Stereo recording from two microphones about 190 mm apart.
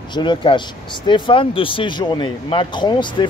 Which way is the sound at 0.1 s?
25° left (ahead or behind).